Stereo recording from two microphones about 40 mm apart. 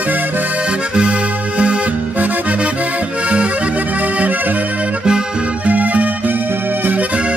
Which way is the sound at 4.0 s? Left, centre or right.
Right.